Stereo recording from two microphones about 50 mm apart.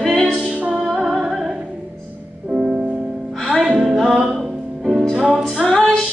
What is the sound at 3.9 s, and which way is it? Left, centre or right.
Music, centre.